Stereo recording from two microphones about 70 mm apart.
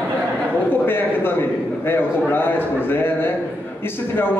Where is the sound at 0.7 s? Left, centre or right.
Left.